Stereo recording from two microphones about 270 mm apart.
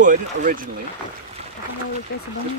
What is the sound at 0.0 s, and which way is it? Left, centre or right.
Speech, right.